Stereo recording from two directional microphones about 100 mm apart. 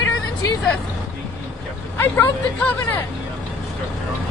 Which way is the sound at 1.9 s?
25° left (ahead or behind).